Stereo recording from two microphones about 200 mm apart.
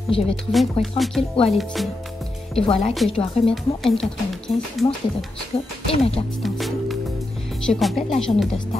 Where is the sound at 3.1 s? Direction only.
30° left (ahead or behind).